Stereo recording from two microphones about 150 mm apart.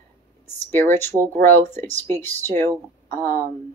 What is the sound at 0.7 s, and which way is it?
Speech, 15° left (ahead or behind).